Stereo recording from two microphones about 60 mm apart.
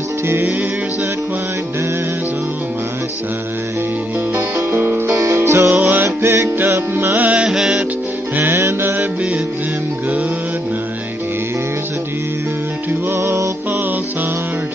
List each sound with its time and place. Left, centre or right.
0.3 s music: right
4.6 s music: right
5.1 s music: right
5.7 s music: right
6.0 s music: right
7.2 s music: right
7.4 s music: centre
8.5 s music: right
13.1 s music: right